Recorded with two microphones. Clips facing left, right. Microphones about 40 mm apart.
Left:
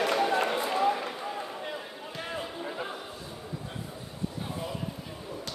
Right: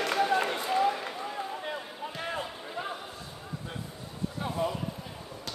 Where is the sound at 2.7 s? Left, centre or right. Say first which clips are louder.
Even; centre.